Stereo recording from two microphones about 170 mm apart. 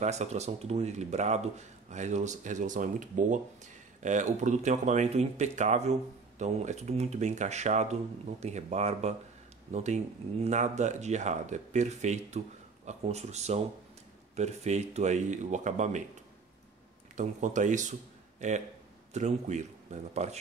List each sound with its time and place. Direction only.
0.0 s speech: 40° right (ahead or behind)
17.2 s speech: 45° right (ahead or behind)
19.1 s speech: 45° right (ahead or behind)